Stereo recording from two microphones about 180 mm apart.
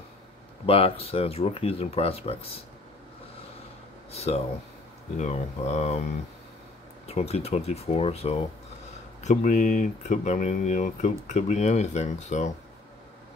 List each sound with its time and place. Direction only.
0.7 s speech: 30° left (ahead or behind)
4.1 s speech: 35° left (ahead or behind)
7.1 s speech: 35° left (ahead or behind)